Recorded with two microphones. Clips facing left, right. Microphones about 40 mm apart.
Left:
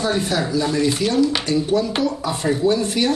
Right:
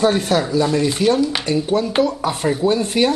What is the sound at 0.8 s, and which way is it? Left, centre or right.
Speech, centre.